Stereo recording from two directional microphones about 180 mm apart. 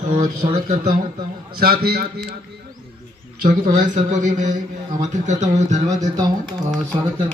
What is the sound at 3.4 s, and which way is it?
A man's voice, 50° right (ahead or behind).